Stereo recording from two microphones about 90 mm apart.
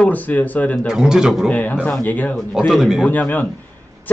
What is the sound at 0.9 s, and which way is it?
Speech, 5° right (ahead or behind).